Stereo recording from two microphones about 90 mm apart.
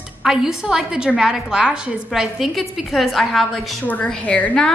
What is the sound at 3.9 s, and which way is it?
Speech, 15° left (ahead or behind).